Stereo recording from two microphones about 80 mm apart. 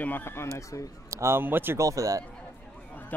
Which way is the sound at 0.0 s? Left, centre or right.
Left.